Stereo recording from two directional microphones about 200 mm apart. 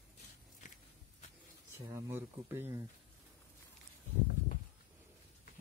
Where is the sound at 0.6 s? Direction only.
35° left (ahead or behind).